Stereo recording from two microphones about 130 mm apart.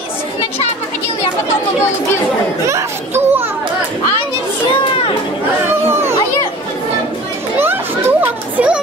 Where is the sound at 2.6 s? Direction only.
20° right (ahead or behind).